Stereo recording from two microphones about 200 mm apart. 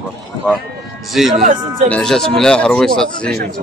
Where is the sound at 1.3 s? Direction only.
35° right (ahead or behind).